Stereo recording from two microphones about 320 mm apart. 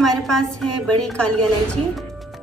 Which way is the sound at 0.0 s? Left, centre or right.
Centre.